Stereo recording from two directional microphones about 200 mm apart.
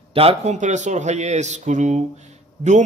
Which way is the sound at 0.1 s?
30° right (ahead or behind).